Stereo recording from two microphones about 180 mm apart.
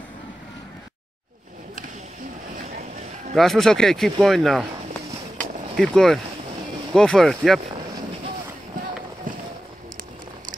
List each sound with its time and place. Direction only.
2.5 s a sound: 45° right (ahead or behind)
3.3 s a man's voice: centre (ahead or behind)
5.8 s a man's voice: centre (ahead or behind)